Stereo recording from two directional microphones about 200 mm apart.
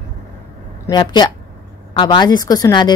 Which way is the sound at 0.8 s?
20° left (ahead or behind).